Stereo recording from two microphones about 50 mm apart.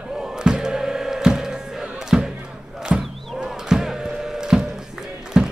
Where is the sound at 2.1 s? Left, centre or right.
Centre.